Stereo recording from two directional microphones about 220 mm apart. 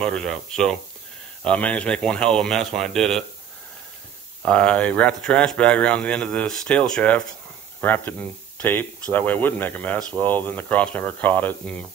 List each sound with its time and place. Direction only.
0.0 s speech: 5° left (ahead or behind)
4.4 s speech: 5° left (ahead or behind)